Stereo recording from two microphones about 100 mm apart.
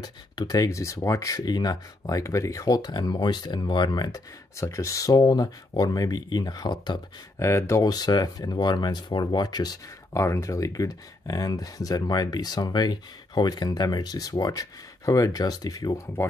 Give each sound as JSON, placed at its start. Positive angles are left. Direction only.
{"t": 0.0, "sound": "speech", "side_deg": 40}
{"t": 4.6, "sound": "speech", "side_deg": 30}
{"t": 7.3, "sound": "speech", "side_deg": 30}
{"t": 10.2, "sound": "speech", "side_deg": 30}